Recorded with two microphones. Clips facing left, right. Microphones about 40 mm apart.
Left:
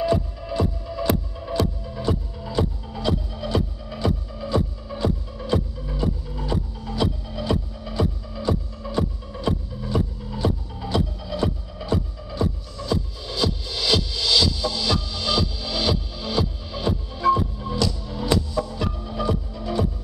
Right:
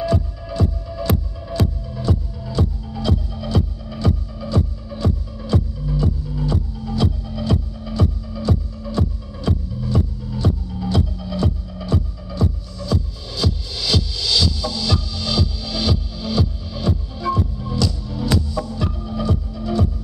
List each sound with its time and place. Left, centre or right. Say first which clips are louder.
0.0 s music: even; centre